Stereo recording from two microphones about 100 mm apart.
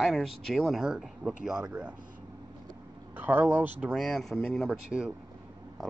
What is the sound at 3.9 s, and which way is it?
Speech, centre (ahead or behind).